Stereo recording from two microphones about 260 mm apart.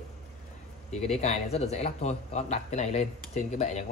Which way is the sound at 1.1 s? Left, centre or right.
Left.